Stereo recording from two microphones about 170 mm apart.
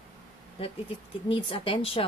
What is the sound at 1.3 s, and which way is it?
Speech, 30° left (ahead or behind).